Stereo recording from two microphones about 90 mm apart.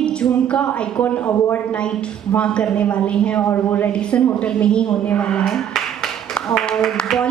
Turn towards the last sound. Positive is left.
turn(degrees=10)  # may be behind; listen again after turning